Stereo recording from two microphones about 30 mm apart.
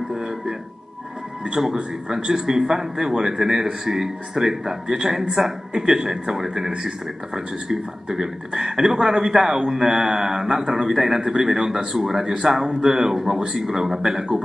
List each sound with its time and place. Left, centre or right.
1.6 s a man's voice: centre
2.0 s speech: centre
10.7 s speech: centre